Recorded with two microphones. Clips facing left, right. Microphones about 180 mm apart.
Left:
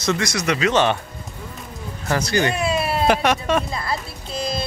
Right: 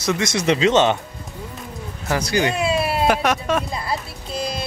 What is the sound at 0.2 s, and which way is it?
Speech, 25° right (ahead or behind).